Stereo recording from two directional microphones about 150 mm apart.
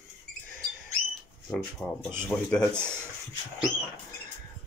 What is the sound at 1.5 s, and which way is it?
Speech, 5° left (ahead or behind).